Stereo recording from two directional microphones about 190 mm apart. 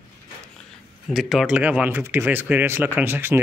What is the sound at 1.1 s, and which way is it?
Speech, centre (ahead or behind).